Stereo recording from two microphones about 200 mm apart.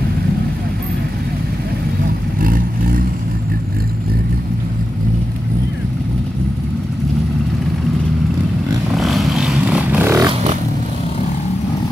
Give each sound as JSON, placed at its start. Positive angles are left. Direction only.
{"t": 2.4, "sound": "vehicle", "side_deg": -45}
{"t": 8.9, "sound": "vehicle", "side_deg": 0}